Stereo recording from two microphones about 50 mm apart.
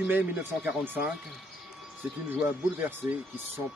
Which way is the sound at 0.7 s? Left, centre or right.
Right.